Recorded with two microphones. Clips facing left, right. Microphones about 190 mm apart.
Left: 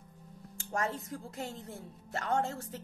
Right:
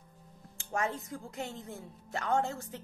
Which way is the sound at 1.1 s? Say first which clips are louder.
Even; 35° left (ahead or behind).